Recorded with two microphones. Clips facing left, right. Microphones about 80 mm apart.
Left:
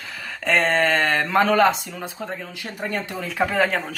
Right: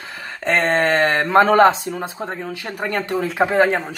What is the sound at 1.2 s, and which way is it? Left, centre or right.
A man's voice, right.